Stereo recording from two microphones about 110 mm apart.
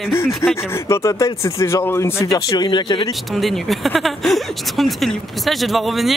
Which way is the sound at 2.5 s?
45° left (ahead or behind).